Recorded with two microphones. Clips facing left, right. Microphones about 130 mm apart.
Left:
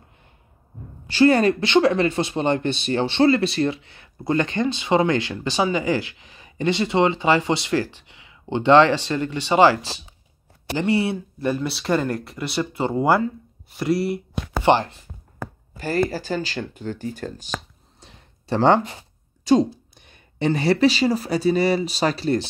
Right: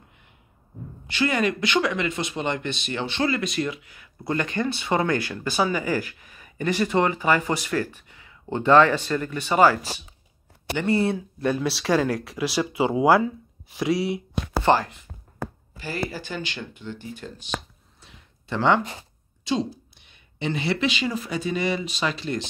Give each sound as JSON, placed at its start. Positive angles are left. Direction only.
{"t": 1.0, "sound": "speech", "side_deg": 35}
{"t": 6.8, "sound": "speech", "side_deg": 20}
{"t": 10.9, "sound": "speech", "side_deg": 10}
{"t": 11.1, "sound": "speech", "side_deg": 0}
{"t": 14.6, "sound": "speech", "side_deg": 25}
{"t": 15.8, "sound": "speech", "side_deg": 45}
{"t": 18.0, "sound": "a sound", "side_deg": 35}
{"t": 19.4, "sound": "speech", "side_deg": 45}